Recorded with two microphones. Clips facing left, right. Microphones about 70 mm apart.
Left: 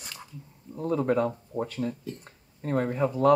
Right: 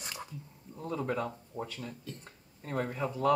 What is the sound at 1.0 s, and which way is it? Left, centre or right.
Speech, left.